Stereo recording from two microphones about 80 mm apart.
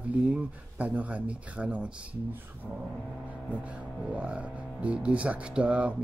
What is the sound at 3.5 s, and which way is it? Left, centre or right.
Speech, centre.